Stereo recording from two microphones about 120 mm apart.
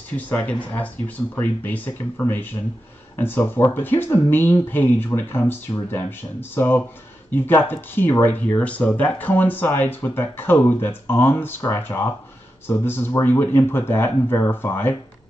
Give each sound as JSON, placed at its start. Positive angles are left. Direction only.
{"t": 0.1, "sound": "speech", "side_deg": 15}